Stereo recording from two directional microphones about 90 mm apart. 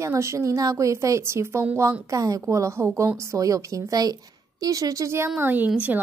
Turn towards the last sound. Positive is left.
turn(degrees=-15)  # may be behind; listen again after turning